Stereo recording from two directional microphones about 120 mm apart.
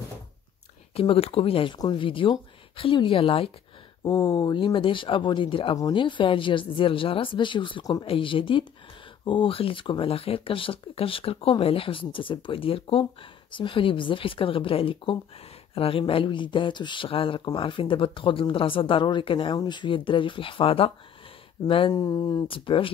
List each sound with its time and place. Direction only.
0.9 s speech: 55° left (ahead or behind)
4.0 s speech: 35° left (ahead or behind)
21.9 s speech: 30° left (ahead or behind)